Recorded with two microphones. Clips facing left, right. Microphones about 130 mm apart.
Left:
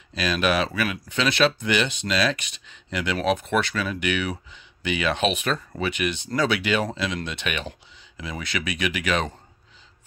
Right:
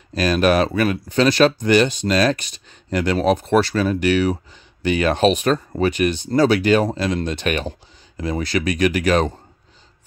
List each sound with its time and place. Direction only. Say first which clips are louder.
0.1 s speech: right 6 dB; 45° right (ahead or behind)